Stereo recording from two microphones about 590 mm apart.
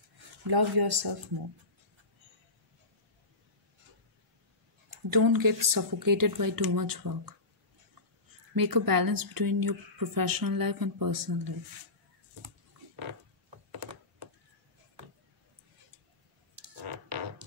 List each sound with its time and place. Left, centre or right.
0.5 s speech: right
5.1 s speech: right
8.5 s speech: right
17.4 s music: right